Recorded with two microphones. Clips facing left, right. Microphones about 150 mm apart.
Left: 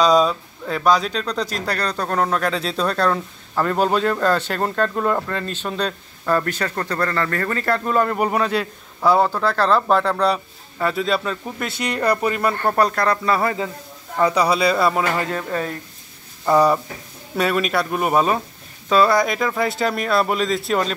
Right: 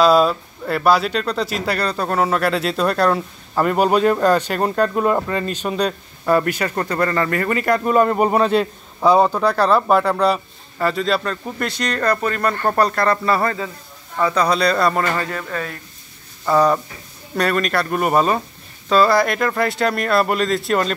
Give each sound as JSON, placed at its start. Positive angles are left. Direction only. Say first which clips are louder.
{"t": 0.0, "sound": "speech", "louder": "right 2 dB", "side_deg": -5}
{"t": 14.1, "sound": "a man's voice", "louder": "even", "side_deg": 15}
{"t": 15.1, "sound": "speech", "louder": "left 1 dB", "side_deg": 25}
{"t": 16.4, "sound": "a man's voice", "louder": "even", "side_deg": 10}